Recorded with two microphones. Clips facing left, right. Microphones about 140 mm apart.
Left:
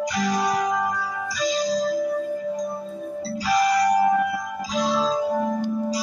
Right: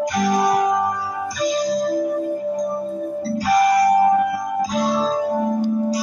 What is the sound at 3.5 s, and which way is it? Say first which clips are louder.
Music: right 4 dB; 50° right (ahead or behind).